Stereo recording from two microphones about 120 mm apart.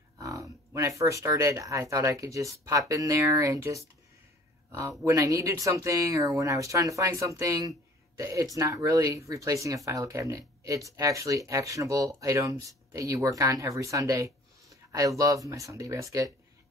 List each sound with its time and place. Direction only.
0.2 s speech: 25° right (ahead or behind)